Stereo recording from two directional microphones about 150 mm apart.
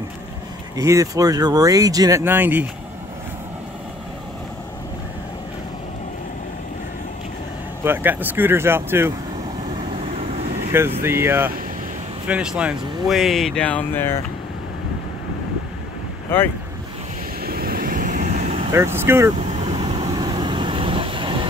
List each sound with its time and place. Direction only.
0.7 s speech: 20° right (ahead or behind)
7.8 s speech: 15° right (ahead or behind)
10.7 s speech: 15° right (ahead or behind); by 14.2 s 15° left (ahead or behind)
17.4 s vehicle: 85° right; by 18.7 s 45° right (ahead or behind)
18.7 s speech: 15° right (ahead or behind)
19.3 s vehicle: 40° right (ahead or behind)
20.2 s vehicle: 30° right (ahead or behind)